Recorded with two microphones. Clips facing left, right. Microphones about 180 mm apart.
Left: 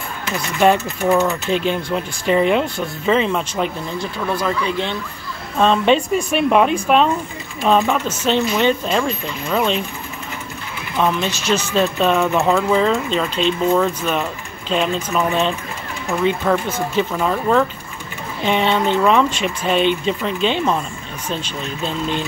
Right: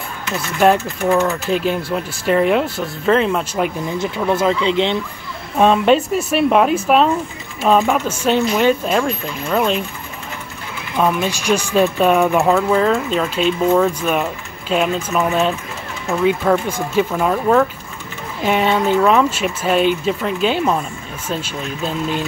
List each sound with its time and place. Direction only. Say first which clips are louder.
0.6 s speech: right 1 dB; centre (ahead or behind)
4.0 s speech: right 5 dB; 20° right (ahead or behind)
5.6 s speech: right 2 dB; 5° right (ahead or behind)
11.0 s speech: right 2 dB; 10° right (ahead or behind)